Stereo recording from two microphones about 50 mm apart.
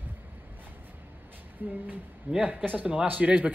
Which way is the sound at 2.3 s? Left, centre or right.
Right.